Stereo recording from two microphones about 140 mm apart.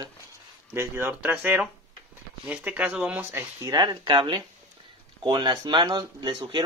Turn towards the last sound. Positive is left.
turn(degrees=-35)  # may be behind; listen again after turning